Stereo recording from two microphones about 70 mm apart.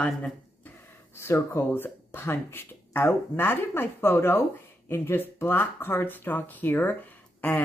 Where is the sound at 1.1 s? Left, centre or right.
Left.